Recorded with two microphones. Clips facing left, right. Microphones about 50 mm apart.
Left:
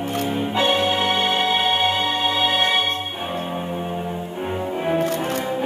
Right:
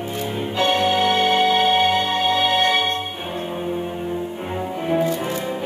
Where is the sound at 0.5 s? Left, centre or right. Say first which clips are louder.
Right 2 dB; centre.